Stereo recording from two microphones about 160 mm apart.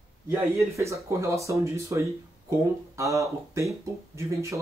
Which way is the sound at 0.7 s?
20° right (ahead or behind).